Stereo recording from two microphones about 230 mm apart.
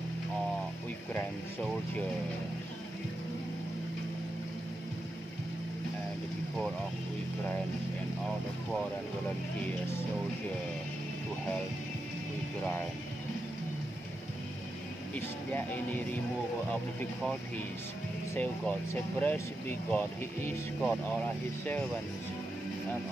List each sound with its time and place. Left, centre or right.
9.7 s speech: centre
15.1 s speech: centre
18.3 s speech: centre